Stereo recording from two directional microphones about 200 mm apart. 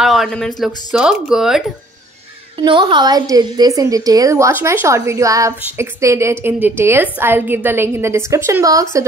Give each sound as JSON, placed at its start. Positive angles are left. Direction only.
{"t": 0.0, "sound": "speech", "side_deg": 0}
{"t": 2.6, "sound": "a woman's voice", "side_deg": -25}